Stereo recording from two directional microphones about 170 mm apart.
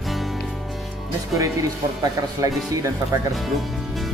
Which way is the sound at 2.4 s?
20° right (ahead or behind).